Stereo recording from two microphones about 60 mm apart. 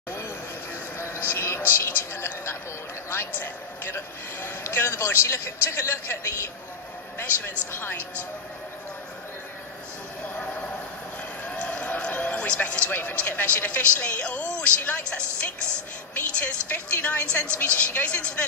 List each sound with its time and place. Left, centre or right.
0.9 s a man's voice: left
7.7 s speech: left
10.3 s a sound: left
11.4 s a man's voice: left